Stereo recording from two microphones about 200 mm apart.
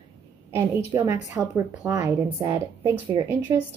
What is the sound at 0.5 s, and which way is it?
Speech, 10° right (ahead or behind).